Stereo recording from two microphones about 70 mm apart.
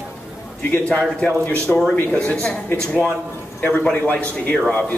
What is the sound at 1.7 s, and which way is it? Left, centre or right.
A woman's voice, centre.